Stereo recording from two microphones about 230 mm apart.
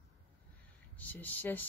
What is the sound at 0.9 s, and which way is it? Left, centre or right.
Speech, centre.